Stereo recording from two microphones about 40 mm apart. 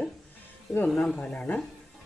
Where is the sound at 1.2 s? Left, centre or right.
Left.